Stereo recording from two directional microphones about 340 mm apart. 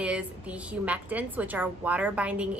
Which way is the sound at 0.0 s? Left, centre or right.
Centre.